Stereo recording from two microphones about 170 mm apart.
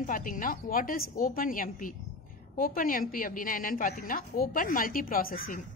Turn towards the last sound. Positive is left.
turn(degrees=60)  # may be behind; listen again after turning